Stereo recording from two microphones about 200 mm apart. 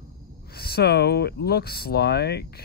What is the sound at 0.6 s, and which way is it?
Speech, 50° left (ahead or behind).